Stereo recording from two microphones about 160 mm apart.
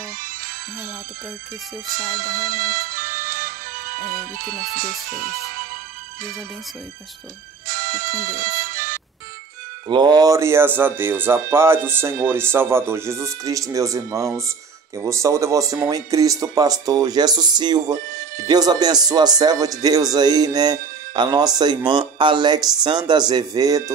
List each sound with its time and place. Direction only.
2.0 s music: 60° right (ahead or behind)
7.6 s music: 60° right (ahead or behind)
9.8 s speech: 25° right (ahead or behind)